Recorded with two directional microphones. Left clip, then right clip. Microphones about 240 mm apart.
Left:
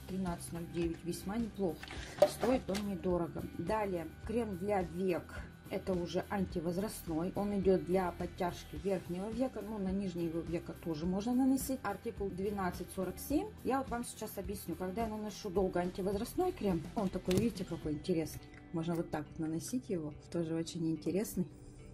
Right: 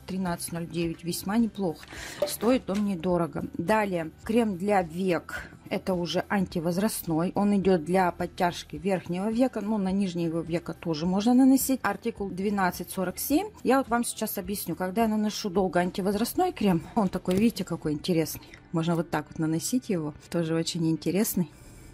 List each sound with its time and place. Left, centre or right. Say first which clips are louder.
0.2 s speech: right 11 dB; right
2.5 s speech: right 8 dB; right